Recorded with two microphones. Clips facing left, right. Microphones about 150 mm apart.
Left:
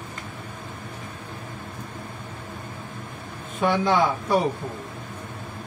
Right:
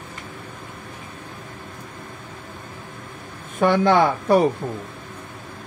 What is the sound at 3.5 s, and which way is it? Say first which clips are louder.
Speech: right 4 dB; 60° right (ahead or behind).